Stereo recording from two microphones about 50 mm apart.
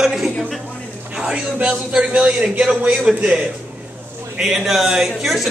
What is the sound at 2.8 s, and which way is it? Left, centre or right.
Speech, right.